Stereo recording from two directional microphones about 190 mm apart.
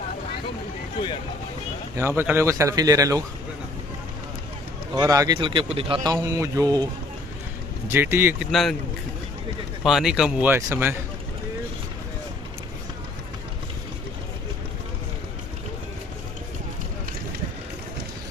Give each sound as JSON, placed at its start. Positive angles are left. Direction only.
{"t": 2.0, "sound": "speech", "side_deg": -15}
{"t": 4.9, "sound": "speech", "side_deg": -20}
{"t": 6.1, "sound": "speech", "side_deg": -15}
{"t": 7.9, "sound": "speech", "side_deg": -10}
{"t": 8.5, "sound": "speech", "side_deg": 0}
{"t": 9.8, "sound": "speech", "side_deg": 0}